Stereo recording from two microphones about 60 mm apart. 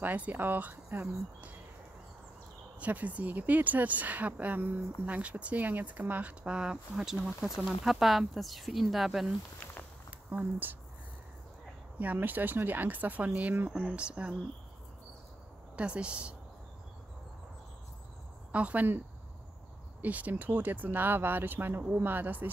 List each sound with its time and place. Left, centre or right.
0.0 s speech: right
2.8 s speech: right; by 9.3 s centre
10.3 s speech: right
12.0 s speech: right
15.7 s speech: centre
18.5 s speech: right
20.0 s speech: right